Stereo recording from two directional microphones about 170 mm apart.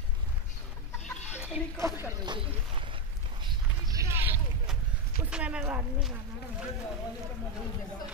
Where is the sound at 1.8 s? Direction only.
15° right (ahead or behind).